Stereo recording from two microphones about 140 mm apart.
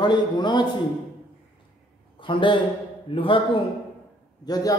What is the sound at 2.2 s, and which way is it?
A man's voice, 35° left (ahead or behind).